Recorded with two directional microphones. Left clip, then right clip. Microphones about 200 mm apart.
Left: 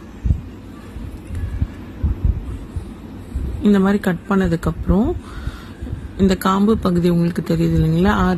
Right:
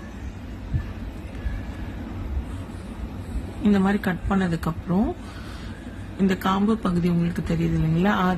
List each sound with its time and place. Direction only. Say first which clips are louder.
3.6 s speech: left 6 dB; 25° left (ahead or behind)
6.2 s speech: left 6 dB; 30° left (ahead or behind)